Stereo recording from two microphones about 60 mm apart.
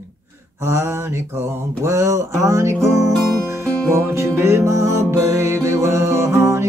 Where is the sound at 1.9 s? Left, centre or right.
Right.